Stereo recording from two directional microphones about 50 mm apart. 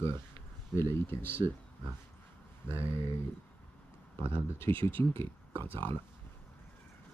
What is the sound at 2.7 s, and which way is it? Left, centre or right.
Speech, left.